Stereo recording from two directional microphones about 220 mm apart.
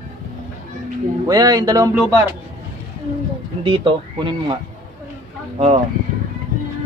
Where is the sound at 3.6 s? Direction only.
25° right (ahead or behind).